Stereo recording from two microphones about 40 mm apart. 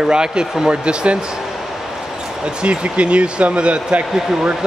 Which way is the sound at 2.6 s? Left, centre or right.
Right.